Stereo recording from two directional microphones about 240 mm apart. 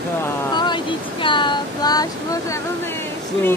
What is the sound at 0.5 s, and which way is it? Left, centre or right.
Speech, centre.